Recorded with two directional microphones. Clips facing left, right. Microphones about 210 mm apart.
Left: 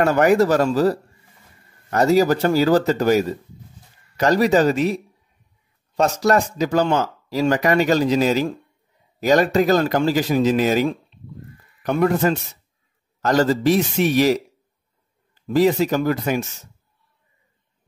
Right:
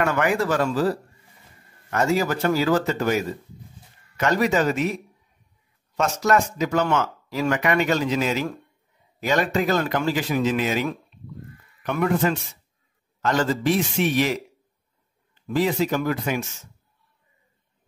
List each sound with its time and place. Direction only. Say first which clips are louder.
0.0 s speech: left 7 dB; 40° left (ahead or behind)